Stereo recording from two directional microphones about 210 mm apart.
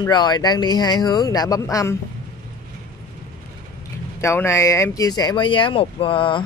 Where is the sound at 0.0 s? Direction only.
20° left (ahead or behind).